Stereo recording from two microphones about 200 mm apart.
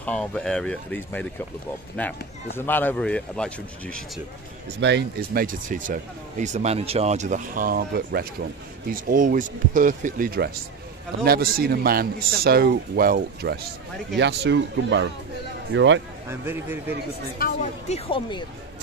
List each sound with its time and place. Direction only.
0.0 s a man's voice: 5° left (ahead or behind)
4.7 s a man's voice: 60° right (ahead or behind)
14.1 s speech: 60° right (ahead or behind)
16.3 s speech: 10° right (ahead or behind)
17.4 s speech: 40° left (ahead or behind)